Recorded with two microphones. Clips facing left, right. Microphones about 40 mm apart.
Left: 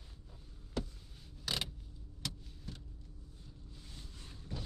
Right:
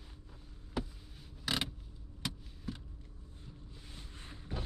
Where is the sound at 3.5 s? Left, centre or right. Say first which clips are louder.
Right 3 dB; right.